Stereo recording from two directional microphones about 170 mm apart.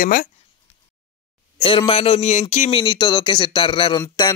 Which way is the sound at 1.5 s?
30° left (ahead or behind).